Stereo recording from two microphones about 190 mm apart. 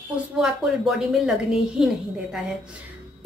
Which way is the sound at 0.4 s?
Centre (ahead or behind).